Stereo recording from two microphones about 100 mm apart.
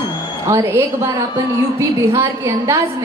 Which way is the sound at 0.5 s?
30° right (ahead or behind).